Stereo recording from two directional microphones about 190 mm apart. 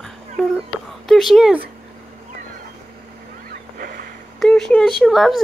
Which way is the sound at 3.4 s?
50° right (ahead or behind).